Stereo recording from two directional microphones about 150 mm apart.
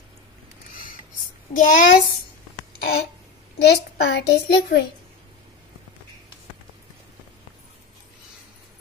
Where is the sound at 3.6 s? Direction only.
90° left.